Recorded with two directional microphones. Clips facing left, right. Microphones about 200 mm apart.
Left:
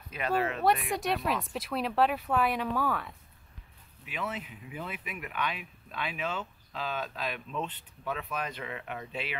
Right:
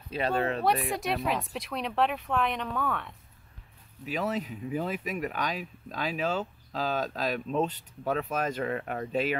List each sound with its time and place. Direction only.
0.1 s speech: 30° right (ahead or behind)
0.7 s speech: centre (ahead or behind)
4.0 s speech: 40° right (ahead or behind)